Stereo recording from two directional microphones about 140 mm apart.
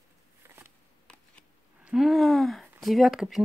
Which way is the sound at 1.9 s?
Centre (ahead or behind).